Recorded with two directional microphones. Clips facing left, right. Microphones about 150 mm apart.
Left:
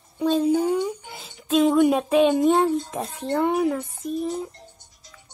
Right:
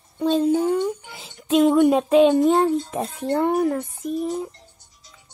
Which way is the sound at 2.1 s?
10° left (ahead or behind).